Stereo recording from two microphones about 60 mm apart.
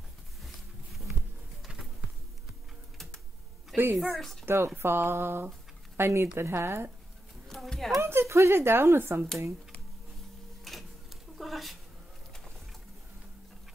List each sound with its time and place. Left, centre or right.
3.7 s speech: right
4.2 s speech: centre
4.5 s a woman's voice: right
7.4 s a sound: centre
8.0 s speech: right
10.6 s a sound: centre